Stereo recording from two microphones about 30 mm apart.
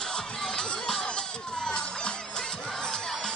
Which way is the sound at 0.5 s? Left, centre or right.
Left.